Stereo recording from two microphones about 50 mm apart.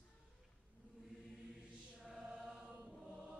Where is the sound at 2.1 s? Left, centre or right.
Centre.